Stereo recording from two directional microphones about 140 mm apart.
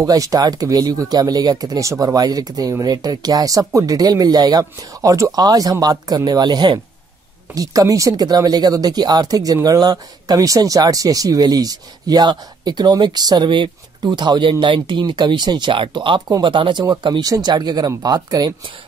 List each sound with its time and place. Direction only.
0.0 s speech: 25° right (ahead or behind)